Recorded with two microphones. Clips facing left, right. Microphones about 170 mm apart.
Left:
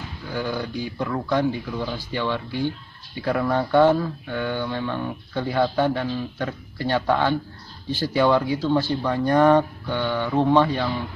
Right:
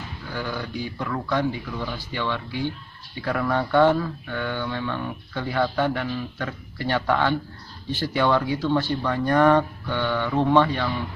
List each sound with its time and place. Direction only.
0.3 s speech: 20° left (ahead or behind)